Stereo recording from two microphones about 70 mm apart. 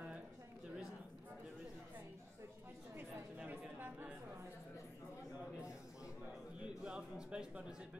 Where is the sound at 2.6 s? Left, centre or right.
Right.